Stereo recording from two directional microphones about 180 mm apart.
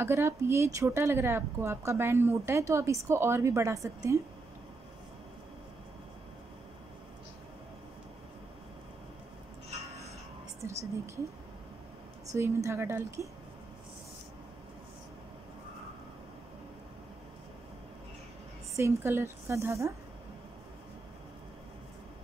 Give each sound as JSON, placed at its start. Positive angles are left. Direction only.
{"t": 0.0, "sound": "speech", "side_deg": -15}
{"t": 10.6, "sound": "a woman's voice", "side_deg": -15}
{"t": 12.4, "sound": "speech", "side_deg": -15}
{"t": 18.8, "sound": "speech", "side_deg": -15}